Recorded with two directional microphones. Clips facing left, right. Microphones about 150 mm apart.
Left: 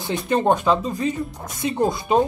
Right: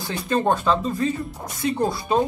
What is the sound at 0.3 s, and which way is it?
Speech, 20° left (ahead or behind).